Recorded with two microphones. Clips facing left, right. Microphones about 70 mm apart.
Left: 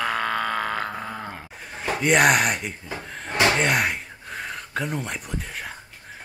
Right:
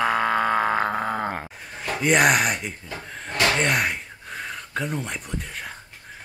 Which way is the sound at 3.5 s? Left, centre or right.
Centre.